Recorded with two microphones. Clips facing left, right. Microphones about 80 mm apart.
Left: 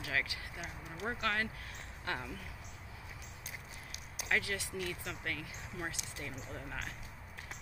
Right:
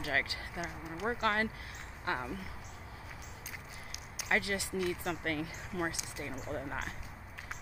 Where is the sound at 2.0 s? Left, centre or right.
Centre.